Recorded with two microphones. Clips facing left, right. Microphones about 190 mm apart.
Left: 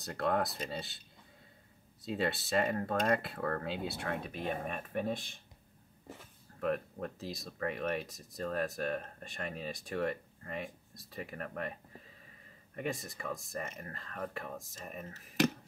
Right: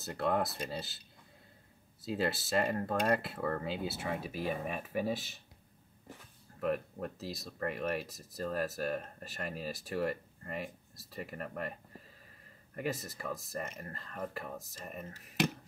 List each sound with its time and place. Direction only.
0.0 s speech: centre (ahead or behind)
2.0 s speech: centre (ahead or behind)
6.6 s speech: centre (ahead or behind)
12.7 s speech: centre (ahead or behind)